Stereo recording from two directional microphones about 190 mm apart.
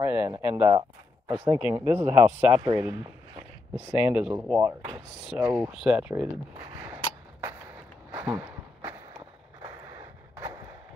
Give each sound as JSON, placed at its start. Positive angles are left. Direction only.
{"t": 0.0, "sound": "speech", "side_deg": -10}
{"t": 0.7, "sound": "speech", "side_deg": -20}
{"t": 1.7, "sound": "speech", "side_deg": -10}
{"t": 6.5, "sound": "a sound", "side_deg": -15}
{"t": 8.1, "sound": "a sound", "side_deg": -10}
{"t": 9.6, "sound": "vehicle", "side_deg": -15}